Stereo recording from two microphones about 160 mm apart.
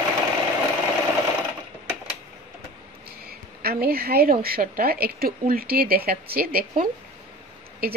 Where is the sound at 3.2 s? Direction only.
75° right (ahead or behind).